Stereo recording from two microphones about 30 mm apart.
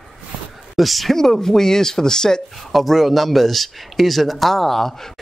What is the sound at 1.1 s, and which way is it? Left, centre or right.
Speech, centre.